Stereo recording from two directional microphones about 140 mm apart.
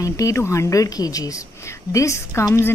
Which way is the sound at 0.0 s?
25° left (ahead or behind).